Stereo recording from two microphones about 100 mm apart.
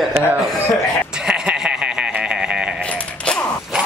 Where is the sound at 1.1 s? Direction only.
10° right (ahead or behind).